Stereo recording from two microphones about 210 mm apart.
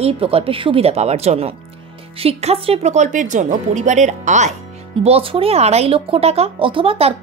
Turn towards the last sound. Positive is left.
turn(degrees=-25)  # may be behind; listen again after turning